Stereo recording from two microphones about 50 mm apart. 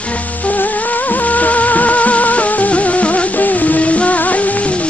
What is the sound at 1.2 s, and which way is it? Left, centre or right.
Music, left.